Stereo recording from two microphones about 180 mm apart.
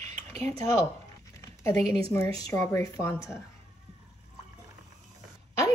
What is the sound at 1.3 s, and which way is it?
Speech, 15° left (ahead or behind).